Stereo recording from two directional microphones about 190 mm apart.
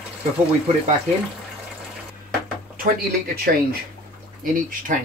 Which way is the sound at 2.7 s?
50° right (ahead or behind).